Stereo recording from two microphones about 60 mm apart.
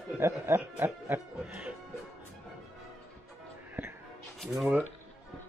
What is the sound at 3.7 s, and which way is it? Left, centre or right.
Music, right.